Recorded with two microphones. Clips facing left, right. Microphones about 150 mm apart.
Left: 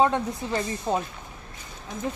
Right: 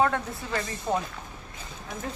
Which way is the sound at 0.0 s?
20° left (ahead or behind).